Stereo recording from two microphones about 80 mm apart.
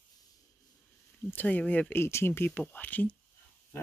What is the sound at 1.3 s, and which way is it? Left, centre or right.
Speech, left.